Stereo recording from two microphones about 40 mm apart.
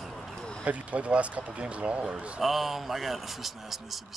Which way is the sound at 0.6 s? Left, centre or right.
Right.